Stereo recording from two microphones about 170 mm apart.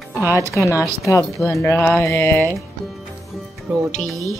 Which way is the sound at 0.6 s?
15° left (ahead or behind).